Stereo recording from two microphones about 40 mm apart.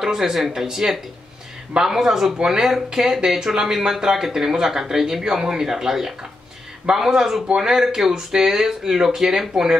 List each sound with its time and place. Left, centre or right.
0.0 s speech: centre